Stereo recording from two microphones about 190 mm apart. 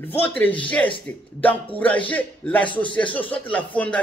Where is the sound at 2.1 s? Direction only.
10° left (ahead or behind).